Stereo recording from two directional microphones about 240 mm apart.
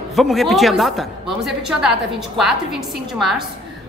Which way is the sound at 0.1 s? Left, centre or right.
Centre.